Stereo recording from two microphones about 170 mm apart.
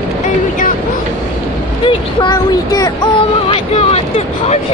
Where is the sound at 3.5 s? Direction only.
35° left (ahead or behind).